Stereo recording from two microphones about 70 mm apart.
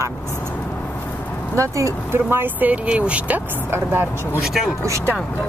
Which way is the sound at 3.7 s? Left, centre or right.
Right.